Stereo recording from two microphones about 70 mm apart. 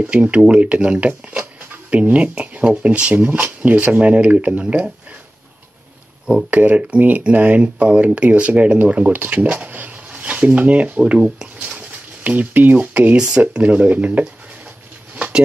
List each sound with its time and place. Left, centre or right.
0.0 s speech: centre
6.5 s speech: right